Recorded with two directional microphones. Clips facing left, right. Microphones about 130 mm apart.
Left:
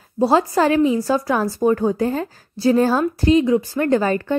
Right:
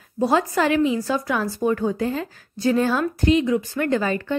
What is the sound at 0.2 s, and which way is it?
A woman's voice, 30° left (ahead or behind).